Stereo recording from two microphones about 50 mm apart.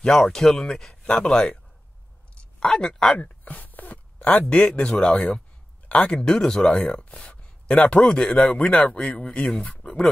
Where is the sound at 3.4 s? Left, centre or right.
Left.